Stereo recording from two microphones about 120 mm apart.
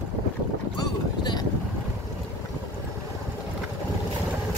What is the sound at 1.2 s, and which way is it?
Boat, 35° left (ahead or behind).